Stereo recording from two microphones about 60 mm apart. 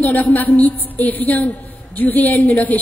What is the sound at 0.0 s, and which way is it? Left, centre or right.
A woman's voice, left.